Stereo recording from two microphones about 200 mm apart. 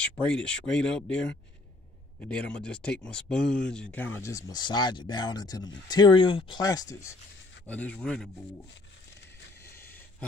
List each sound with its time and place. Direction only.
0.0 s speech: 5° left (ahead or behind)